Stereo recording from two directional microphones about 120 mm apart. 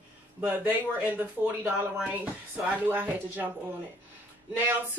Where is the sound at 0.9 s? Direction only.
15° right (ahead or behind).